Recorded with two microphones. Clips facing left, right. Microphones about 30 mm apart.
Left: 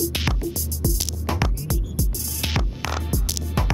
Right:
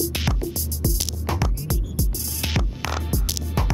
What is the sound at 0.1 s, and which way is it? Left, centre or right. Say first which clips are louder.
Music: left 1 dB; centre.